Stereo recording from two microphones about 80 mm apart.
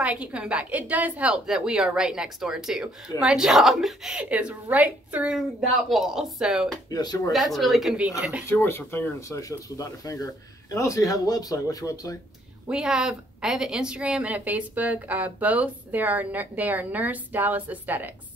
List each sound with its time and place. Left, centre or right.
0.0 s speech: centre
1.3 s speech: centre
4.2 s speech: centre
5.9 s speech: centre
6.9 s speech: left
7.5 s a woman's voice: centre
8.2 s speech: centre
8.5 s speech: left
9.3 s speech: left
12.6 s a woman's voice: centre